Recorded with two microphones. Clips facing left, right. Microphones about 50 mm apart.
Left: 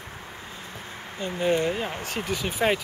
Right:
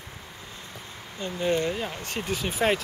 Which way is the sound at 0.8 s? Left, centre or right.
Left.